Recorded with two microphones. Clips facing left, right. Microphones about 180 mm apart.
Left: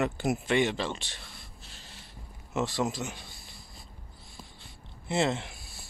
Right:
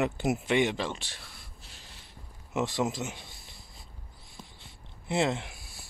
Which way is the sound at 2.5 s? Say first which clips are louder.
Even; 20° right (ahead or behind).